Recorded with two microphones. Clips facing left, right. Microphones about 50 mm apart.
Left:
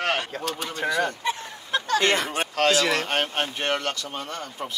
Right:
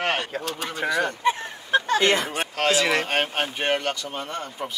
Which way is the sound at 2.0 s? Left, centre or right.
Left.